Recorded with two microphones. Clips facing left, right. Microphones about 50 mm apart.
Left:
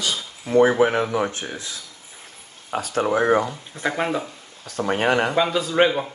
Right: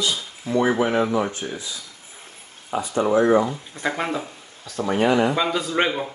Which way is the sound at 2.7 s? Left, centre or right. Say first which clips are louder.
Right 1 dB; left.